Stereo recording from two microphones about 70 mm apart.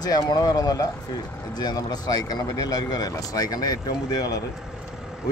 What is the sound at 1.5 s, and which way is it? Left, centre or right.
Speech, left.